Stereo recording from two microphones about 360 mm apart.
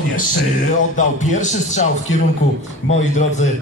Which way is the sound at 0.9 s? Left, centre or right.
Centre.